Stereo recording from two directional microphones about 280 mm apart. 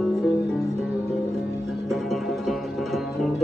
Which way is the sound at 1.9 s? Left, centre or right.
Centre.